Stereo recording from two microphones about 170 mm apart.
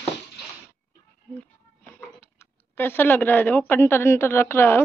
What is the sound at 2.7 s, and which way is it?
Speech, 15° left (ahead or behind).